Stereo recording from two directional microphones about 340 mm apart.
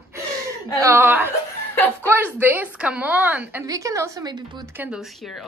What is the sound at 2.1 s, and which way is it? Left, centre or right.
A woman's voice, centre.